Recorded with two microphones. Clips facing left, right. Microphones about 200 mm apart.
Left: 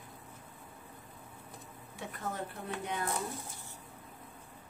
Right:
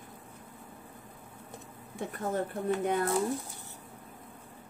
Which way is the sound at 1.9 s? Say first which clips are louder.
Right 7 dB; 50° right (ahead or behind).